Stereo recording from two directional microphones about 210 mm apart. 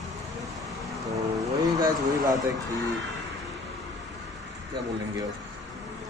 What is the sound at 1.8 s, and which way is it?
Speech, 20° right (ahead or behind).